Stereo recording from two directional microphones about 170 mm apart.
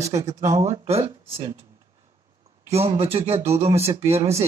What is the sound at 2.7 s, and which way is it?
Speech, 35° right (ahead or behind).